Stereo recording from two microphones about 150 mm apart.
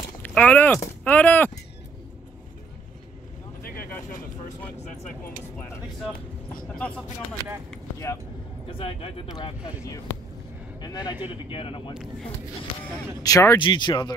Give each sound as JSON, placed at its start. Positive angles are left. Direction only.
{"t": 0.2, "sound": "speech", "side_deg": 10}
{"t": 6.0, "sound": "speech", "side_deg": 5}
{"t": 8.0, "sound": "speech", "side_deg": 20}
{"t": 8.6, "sound": "speech", "side_deg": 35}
{"t": 10.8, "sound": "speech", "side_deg": 25}
{"t": 11.5, "sound": "speech", "side_deg": 35}
{"t": 11.9, "sound": "speech", "side_deg": -5}
{"t": 13.2, "sound": "speech", "side_deg": 20}
{"t": 13.6, "sound": "speech", "side_deg": 30}